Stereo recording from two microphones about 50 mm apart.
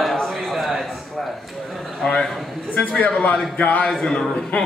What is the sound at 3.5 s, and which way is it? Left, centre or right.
Speech, left.